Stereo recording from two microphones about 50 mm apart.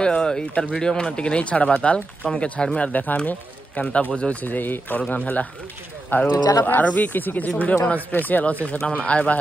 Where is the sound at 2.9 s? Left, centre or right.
Left.